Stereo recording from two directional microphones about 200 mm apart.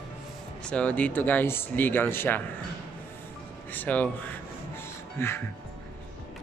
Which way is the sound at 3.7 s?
10° left (ahead or behind).